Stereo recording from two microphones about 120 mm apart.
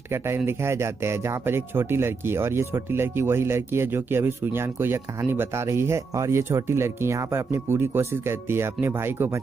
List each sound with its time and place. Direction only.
0.1 s speech: 20° right (ahead or behind)